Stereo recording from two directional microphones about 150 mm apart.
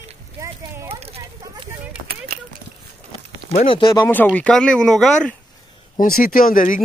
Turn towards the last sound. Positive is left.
turn(degrees=65)  # may be behind; listen again after turning